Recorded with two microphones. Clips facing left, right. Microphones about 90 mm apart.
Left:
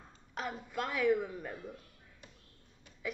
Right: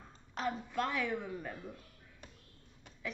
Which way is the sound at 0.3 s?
5° left (ahead or behind).